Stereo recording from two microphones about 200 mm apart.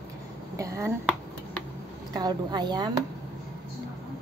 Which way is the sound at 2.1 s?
20° right (ahead or behind).